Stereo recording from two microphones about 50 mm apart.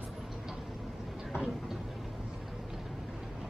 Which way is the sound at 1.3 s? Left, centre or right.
Centre.